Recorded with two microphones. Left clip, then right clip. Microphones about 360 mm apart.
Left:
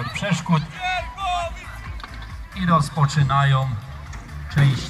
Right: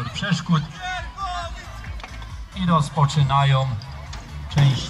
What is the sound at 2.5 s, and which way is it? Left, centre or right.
Speech, centre.